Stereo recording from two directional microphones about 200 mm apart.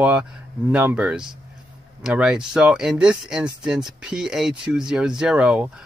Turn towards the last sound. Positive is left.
turn(degrees=-5)  # may be behind; listen again after turning